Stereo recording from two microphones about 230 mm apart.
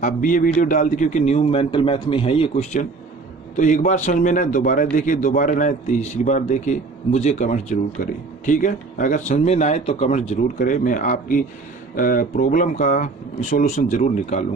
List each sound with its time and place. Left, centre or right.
0.0 s a man's voice: left